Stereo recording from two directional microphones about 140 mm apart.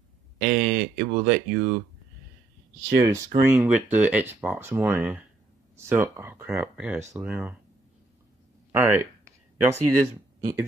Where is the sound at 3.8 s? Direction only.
10° right (ahead or behind).